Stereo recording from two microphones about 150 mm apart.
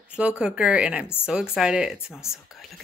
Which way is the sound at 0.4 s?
5° right (ahead or behind).